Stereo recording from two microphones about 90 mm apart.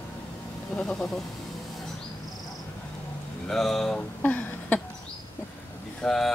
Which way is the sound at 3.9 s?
20° left (ahead or behind).